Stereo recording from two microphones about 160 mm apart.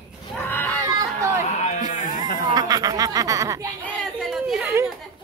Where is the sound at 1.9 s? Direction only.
55° left (ahead or behind).